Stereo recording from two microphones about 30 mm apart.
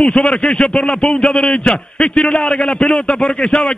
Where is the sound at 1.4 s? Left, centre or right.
Left.